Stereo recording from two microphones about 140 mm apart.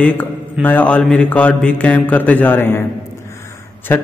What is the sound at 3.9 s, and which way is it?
Speech, 15° left (ahead or behind).